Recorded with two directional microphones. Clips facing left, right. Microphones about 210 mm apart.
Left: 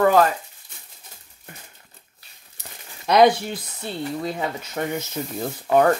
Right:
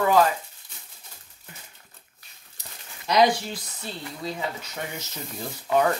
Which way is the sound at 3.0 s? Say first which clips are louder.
Left 5 dB; 55° left (ahead or behind).